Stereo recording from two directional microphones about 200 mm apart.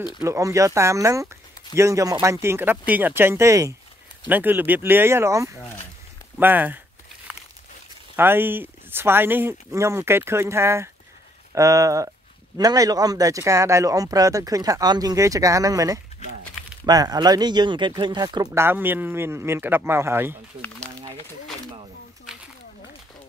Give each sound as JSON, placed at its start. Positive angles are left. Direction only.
{"t": 0.2, "sound": "speech", "side_deg": -15}
{"t": 8.2, "sound": "speech", "side_deg": -10}